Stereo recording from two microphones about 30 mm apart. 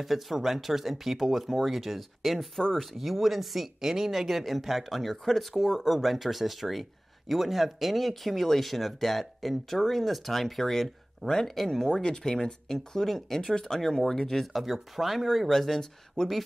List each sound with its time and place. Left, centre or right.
0.0 s speech: centre
5.6 s speech: centre
11.9 s speech: left
12.6 s speech: centre
13.7 s speech: centre
16.2 s speech: centre